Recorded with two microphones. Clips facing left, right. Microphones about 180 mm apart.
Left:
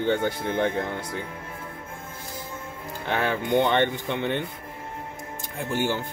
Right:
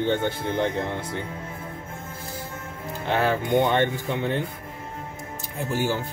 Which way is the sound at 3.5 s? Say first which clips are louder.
Left 1 dB; 10° right (ahead or behind).